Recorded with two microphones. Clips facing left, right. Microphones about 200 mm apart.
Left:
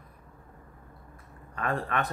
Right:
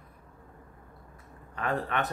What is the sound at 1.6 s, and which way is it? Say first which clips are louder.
Speech: even; 10° right (ahead or behind).